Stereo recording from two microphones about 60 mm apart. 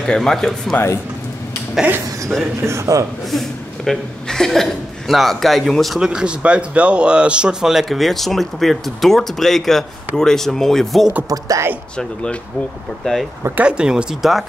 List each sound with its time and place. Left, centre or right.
0.0 s speech: centre
2.6 s a man's voice: right
3.3 s speech: centre
5.9 s speech: centre
11.2 s speech: right
12.0 s speech: centre
13.0 s speech: centre
13.6 s speech: centre
14.2 s speech: centre